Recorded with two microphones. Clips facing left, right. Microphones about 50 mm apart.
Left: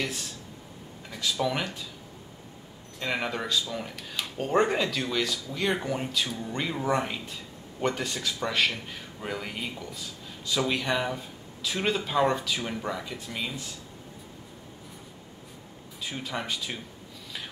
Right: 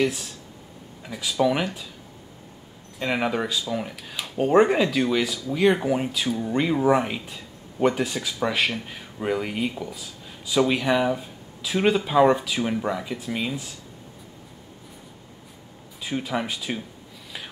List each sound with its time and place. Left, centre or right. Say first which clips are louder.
0.0 s speech: right 8 dB; centre
3.0 s speech: right 6 dB; centre
16.0 s speech: right 7 dB; centre